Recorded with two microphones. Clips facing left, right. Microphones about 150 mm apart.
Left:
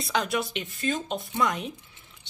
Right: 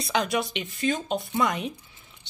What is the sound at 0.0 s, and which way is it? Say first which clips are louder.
Speech: right 2 dB; centre (ahead or behind).